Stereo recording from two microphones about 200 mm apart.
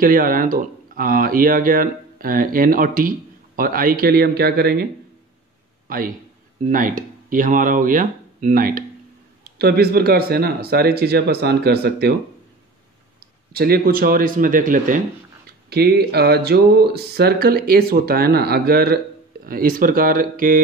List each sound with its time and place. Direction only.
0.0 s speech: 45° right (ahead or behind)
5.9 s a man's voice: 45° right (ahead or behind)
13.2 s speech: 50° right (ahead or behind)
15.7 s speech: 50° right (ahead or behind)